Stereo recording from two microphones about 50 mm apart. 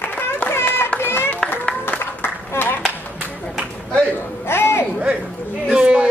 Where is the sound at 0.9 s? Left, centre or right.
Left.